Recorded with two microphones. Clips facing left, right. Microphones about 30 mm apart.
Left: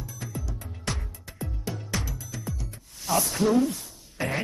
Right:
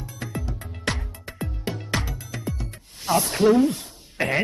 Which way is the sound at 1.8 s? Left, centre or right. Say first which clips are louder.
Right 6 dB; right.